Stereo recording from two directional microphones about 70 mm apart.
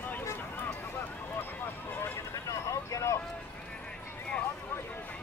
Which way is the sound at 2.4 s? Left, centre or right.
Left.